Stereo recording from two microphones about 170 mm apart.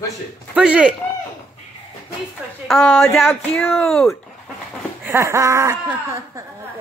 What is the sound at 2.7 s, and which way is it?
Speech, 5° left (ahead or behind).